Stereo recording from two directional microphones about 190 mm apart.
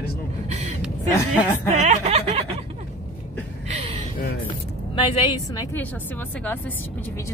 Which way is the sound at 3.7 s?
35° right (ahead or behind).